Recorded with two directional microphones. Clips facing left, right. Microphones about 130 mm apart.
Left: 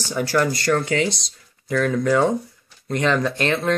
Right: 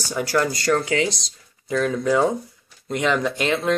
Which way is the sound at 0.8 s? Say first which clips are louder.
Even; 30° left (ahead or behind).